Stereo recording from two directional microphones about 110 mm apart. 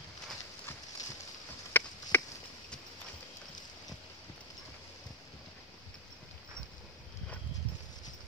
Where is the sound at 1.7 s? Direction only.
20° left (ahead or behind).